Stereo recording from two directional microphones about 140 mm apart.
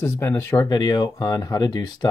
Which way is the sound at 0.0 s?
20° left (ahead or behind).